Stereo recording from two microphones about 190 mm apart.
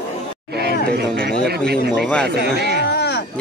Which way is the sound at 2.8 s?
60° left (ahead or behind).